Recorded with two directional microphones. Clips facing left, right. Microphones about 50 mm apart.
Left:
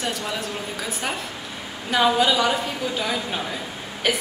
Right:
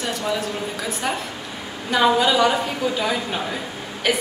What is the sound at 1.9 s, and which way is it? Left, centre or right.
A woman's voice, centre.